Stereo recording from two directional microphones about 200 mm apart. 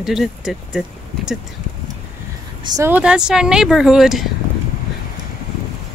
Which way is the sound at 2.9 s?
5° right (ahead or behind).